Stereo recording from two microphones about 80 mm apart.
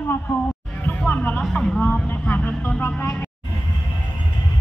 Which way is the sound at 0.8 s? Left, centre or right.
Centre.